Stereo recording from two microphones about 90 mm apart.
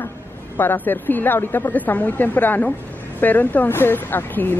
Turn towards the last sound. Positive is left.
turn(degrees=20)  # may be behind; listen again after turning